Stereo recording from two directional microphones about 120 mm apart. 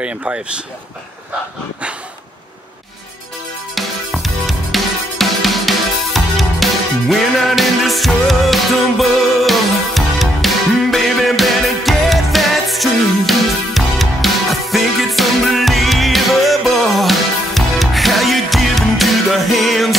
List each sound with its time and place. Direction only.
0.0 s speech: 10° right (ahead or behind)
3.7 s music: centre (ahead or behind)